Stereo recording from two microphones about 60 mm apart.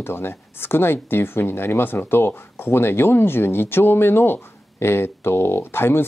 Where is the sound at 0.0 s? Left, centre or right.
Left.